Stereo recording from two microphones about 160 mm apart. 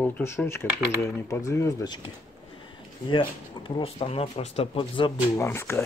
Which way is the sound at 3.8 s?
40° left (ahead or behind).